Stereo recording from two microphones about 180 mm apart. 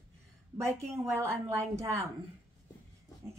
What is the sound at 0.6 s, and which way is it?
Speech, 15° right (ahead or behind).